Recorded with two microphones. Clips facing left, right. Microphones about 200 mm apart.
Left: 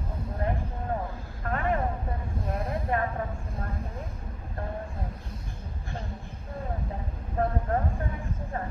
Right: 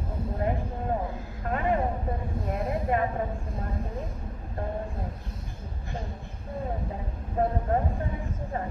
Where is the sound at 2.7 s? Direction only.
20° right (ahead or behind).